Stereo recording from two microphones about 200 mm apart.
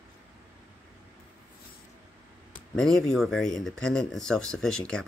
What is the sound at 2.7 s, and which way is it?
Speech, 5° left (ahead or behind).